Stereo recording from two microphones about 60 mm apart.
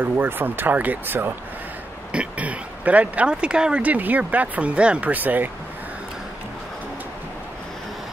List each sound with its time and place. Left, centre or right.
0.0 s speech: right
2.1 s speech: right
3.8 s speech: right
5.1 s speech: right